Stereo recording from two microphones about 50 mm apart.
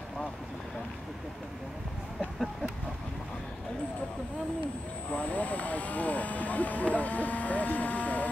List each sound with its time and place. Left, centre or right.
5.1 s speech: left